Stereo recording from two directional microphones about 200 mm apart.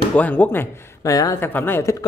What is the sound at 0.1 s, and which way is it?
Speech, 10° left (ahead or behind).